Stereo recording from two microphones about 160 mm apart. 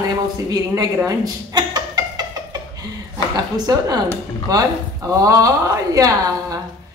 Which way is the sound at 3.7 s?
25° right (ahead or behind).